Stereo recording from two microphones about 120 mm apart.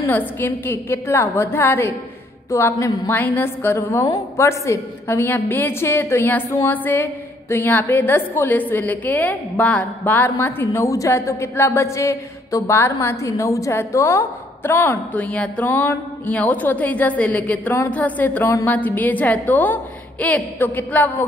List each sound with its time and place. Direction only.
0.0 s a woman's voice: 15° left (ahead or behind)